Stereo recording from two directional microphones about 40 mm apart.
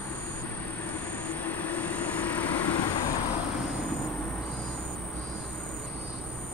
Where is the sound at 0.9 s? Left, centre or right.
Left.